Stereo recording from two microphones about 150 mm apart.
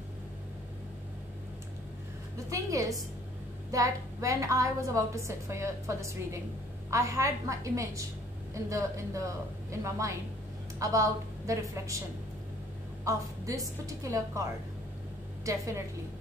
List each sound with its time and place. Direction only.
2.3 s a sound: 20° right (ahead or behind)
3.7 s a woman's voice: 20° right (ahead or behind)
13.0 s a woman's voice: 20° right (ahead or behind)